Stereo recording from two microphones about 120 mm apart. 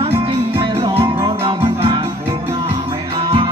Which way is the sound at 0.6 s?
45° right (ahead or behind).